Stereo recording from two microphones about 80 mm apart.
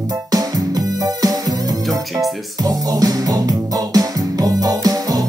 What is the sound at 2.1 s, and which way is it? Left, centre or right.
Music, centre.